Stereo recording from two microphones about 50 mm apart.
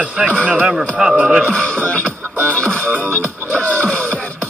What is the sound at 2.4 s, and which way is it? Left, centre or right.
Music, left.